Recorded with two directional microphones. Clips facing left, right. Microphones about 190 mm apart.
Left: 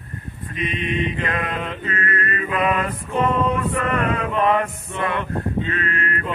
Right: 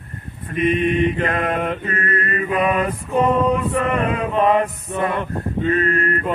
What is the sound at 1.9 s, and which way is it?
Chant, 35° right (ahead or behind).